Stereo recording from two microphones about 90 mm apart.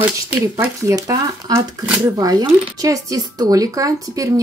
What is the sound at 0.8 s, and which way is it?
Speech, 40° right (ahead or behind).